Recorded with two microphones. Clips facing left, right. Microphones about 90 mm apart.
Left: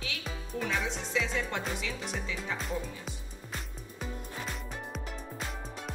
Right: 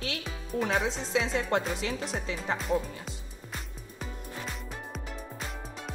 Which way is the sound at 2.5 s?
Centre (ahead or behind).